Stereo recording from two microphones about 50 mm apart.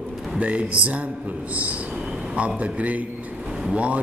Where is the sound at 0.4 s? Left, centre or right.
Right.